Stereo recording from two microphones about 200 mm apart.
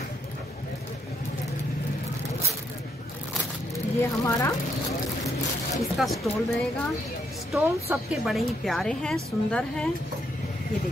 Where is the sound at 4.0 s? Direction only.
15° left (ahead or behind).